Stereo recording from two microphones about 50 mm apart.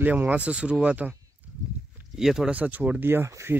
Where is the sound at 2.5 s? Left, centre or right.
Right.